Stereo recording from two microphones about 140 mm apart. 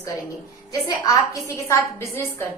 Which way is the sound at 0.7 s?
25° left (ahead or behind).